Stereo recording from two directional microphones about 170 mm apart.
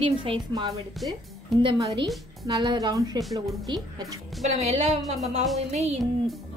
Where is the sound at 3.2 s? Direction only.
Centre (ahead or behind).